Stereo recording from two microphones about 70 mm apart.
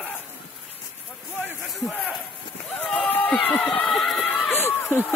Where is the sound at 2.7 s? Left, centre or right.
Centre.